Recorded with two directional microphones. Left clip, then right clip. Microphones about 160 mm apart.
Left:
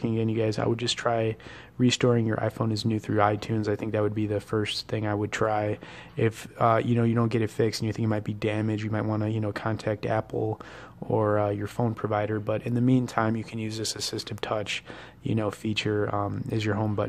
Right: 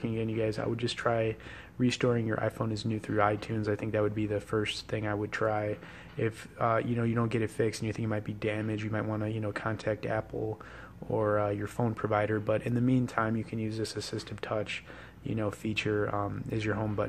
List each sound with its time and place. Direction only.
0.0 s speech: 30° left (ahead or behind)